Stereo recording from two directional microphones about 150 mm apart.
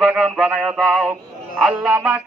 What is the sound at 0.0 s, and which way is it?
A man's voice, centre (ahead or behind).